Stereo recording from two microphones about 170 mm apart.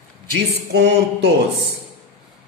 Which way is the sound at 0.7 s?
75° right (ahead or behind).